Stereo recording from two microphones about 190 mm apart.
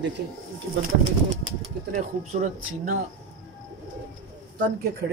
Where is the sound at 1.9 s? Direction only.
40° right (ahead or behind).